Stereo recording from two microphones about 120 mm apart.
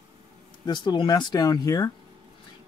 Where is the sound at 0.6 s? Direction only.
40° left (ahead or behind).